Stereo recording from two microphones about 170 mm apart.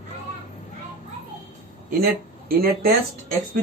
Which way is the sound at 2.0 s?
60° right (ahead or behind).